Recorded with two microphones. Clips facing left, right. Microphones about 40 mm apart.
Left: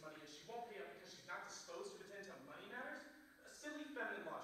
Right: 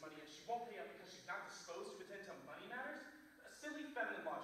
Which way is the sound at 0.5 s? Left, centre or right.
Centre.